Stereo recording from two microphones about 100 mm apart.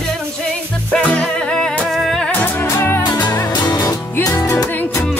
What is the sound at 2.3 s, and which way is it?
Music, 20° left (ahead or behind).